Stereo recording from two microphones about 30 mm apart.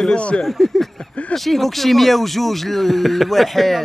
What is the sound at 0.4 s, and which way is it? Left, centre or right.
Speech, centre.